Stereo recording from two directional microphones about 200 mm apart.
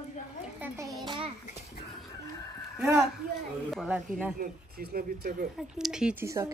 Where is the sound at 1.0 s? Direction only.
25° right (ahead or behind).